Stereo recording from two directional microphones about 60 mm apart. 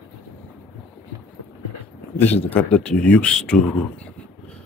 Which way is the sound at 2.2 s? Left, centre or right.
Left.